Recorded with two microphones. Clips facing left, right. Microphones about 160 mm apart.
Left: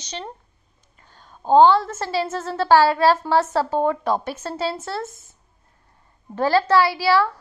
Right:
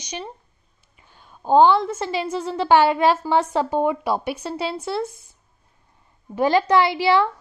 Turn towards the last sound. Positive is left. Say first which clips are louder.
# even
turn(degrees=-20)  # may be behind; listen again after turning